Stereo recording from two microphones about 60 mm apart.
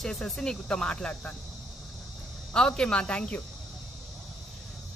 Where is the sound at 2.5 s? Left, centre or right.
Centre.